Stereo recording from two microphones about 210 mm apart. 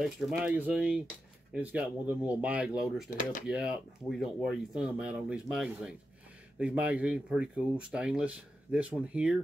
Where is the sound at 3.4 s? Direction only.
5° right (ahead or behind).